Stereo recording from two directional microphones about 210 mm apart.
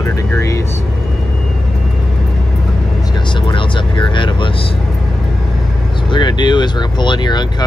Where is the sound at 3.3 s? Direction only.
20° left (ahead or behind).